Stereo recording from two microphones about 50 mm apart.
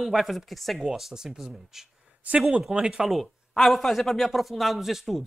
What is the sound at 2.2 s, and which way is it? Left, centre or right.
Speech, right.